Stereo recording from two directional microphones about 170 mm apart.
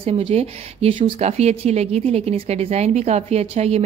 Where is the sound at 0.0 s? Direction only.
35° right (ahead or behind).